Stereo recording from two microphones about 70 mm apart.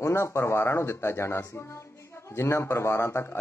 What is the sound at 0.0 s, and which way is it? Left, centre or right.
Speech, left.